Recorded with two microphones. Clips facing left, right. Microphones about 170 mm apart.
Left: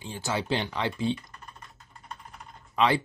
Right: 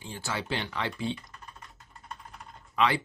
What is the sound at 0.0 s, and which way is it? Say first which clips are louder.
Speech: left 4 dB; 20° left (ahead or behind).